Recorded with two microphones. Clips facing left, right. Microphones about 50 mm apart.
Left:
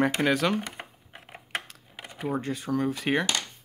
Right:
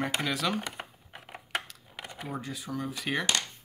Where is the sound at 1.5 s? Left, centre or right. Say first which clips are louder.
Even; left.